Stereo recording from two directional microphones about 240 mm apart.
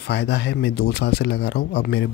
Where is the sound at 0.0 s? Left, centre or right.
Left.